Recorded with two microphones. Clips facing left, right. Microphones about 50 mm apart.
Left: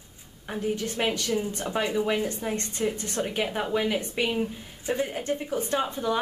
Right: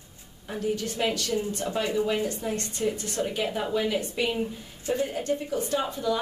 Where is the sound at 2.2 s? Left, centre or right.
Left.